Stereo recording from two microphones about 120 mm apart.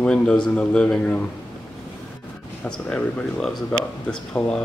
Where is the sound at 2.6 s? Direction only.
10° left (ahead or behind).